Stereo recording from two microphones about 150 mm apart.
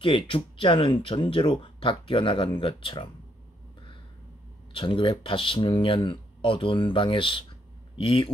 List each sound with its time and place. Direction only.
0.0 s speech: 35° left (ahead or behind)
4.7 s speech: 35° left (ahead or behind)